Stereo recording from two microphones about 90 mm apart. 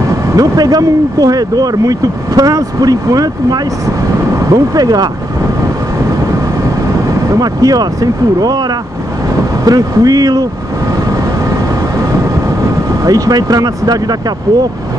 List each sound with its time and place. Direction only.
0.4 s speech: 45° right (ahead or behind)
7.2 s speech: 45° right (ahead or behind)
9.7 s speech: 45° right (ahead or behind)
13.0 s speech: 45° right (ahead or behind)